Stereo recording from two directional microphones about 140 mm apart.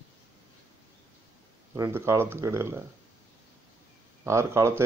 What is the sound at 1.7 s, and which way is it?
Speech, 20° right (ahead or behind).